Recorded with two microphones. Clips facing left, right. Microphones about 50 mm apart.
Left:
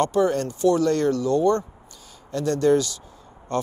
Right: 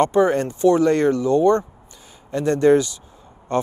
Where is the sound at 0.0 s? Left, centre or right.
Right.